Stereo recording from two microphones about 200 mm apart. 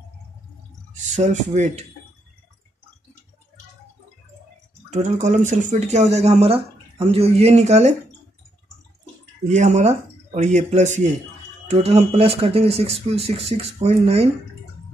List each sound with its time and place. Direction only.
0.9 s speech: 35° right (ahead or behind)
4.9 s speech: 35° right (ahead or behind)
9.5 s speech: 35° right (ahead or behind)